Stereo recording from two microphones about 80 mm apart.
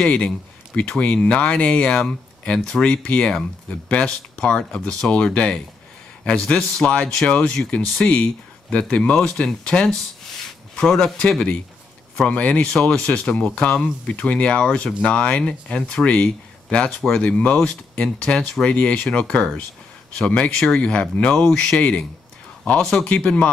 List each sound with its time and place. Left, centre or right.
0.0 s speech: centre